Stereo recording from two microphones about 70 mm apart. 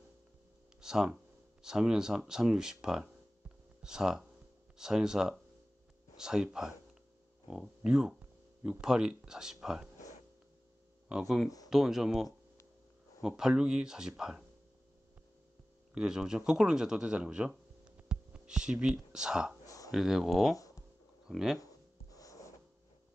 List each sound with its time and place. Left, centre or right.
0.7 s speech: centre
11.2 s speech: centre
13.4 s speech: centre
15.9 s speech: centre
19.6 s a sound: left
19.9 s speech: centre
22.1 s wheeze: left